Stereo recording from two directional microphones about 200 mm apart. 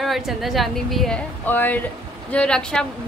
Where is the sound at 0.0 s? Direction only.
Centre (ahead or behind).